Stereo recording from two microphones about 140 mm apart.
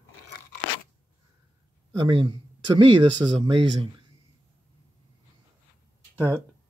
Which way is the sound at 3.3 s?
40° right (ahead or behind).